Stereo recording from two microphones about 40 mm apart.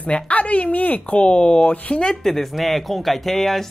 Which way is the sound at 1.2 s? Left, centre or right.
Left.